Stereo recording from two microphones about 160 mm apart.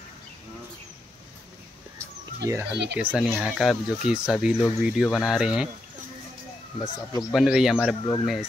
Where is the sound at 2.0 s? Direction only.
15° right (ahead or behind).